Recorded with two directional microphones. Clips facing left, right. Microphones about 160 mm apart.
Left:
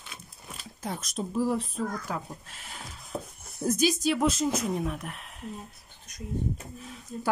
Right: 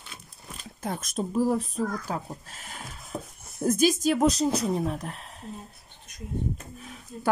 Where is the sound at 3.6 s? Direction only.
50° right (ahead or behind); by 5.1 s 35° right (ahead or behind).